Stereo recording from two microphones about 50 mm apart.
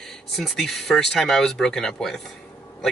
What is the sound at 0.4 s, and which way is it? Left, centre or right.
Speech, centre.